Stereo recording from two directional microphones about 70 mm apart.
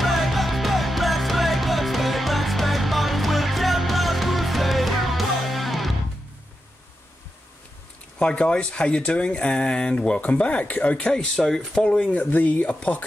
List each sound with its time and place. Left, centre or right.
0.0 s music: centre
8.2 s speech: centre
11.3 s speech: centre